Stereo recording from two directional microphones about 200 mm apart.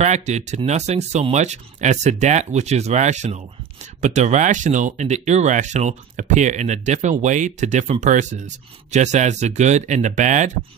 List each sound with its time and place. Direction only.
0.0 s speech: 35° right (ahead or behind)